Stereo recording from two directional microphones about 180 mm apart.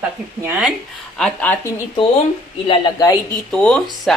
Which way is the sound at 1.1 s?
5° left (ahead or behind).